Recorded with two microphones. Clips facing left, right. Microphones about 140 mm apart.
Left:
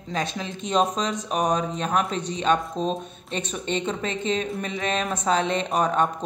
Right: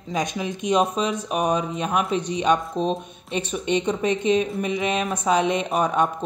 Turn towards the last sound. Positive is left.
turn(degrees=-10)  # may be behind; listen again after turning